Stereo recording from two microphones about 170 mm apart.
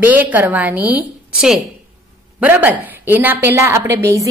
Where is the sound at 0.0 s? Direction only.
10° right (ahead or behind).